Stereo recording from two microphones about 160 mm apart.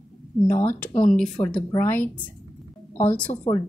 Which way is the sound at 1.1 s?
5° left (ahead or behind).